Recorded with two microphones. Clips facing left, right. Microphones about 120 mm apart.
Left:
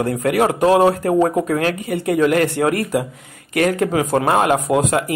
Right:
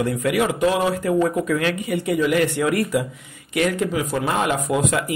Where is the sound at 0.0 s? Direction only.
45° left (ahead or behind).